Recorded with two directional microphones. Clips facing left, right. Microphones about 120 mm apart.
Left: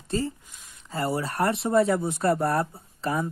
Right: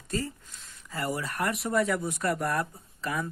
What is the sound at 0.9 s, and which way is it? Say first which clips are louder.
Speech: left 5 dB; 30° left (ahead or behind).